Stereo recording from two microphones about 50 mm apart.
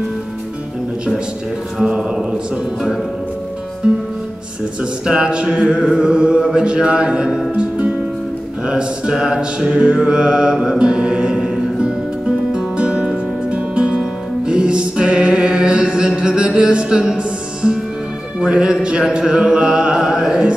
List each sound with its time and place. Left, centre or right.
1.8 s music: centre
5.0 s music: centre
19.0 s a sound: centre